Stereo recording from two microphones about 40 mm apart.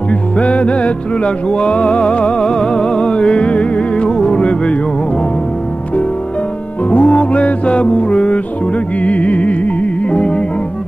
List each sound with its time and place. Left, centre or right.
0.4 s music: left
6.9 s music: left